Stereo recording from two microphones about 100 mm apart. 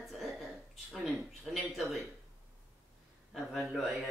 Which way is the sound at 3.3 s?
Centre (ahead or behind).